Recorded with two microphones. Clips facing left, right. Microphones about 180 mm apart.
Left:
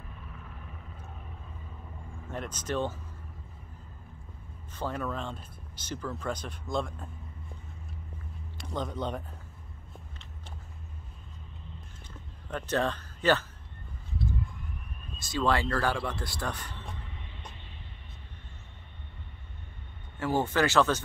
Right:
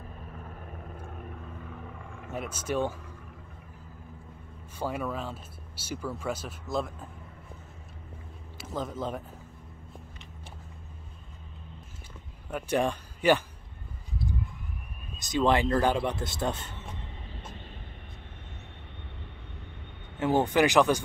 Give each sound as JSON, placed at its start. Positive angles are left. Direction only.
{"t": 0.2, "sound": "vehicle", "side_deg": -45}
{"t": 2.3, "sound": "speech", "side_deg": -10}
{"t": 4.7, "sound": "speech", "side_deg": -10}
{"t": 8.5, "sound": "speech", "side_deg": -5}
{"t": 12.4, "sound": "speech", "side_deg": -10}
{"t": 15.1, "sound": "speech", "side_deg": -20}
{"t": 20.2, "sound": "speech", "side_deg": -20}